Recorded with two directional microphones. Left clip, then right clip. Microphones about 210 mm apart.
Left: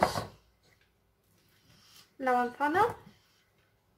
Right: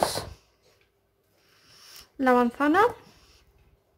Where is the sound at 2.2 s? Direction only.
50° right (ahead or behind).